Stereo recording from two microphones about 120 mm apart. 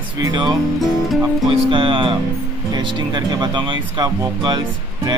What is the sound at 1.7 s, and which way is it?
Speech, 45° right (ahead or behind).